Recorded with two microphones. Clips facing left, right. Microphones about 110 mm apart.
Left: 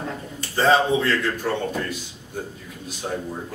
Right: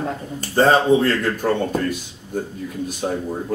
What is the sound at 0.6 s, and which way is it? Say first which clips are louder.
Speech: right 4 dB; 45° right (ahead or behind).